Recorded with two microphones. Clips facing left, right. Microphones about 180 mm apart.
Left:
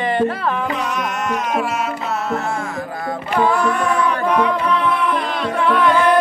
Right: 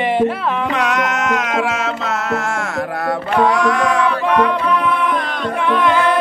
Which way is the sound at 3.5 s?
90° right.